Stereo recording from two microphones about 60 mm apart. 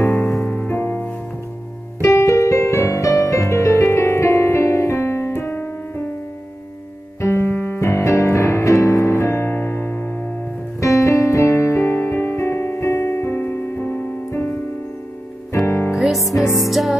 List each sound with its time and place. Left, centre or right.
0.0 s music: left
0.5 s music: left
0.7 s music: left
2.1 s music: left
7.2 s keyboard: left
7.5 s piano: left
7.8 s music: left
10.8 s piano: left
15.6 s music: left
15.9 s music: centre